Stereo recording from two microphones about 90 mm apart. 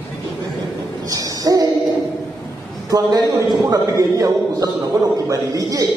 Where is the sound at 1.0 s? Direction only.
40° right (ahead or behind).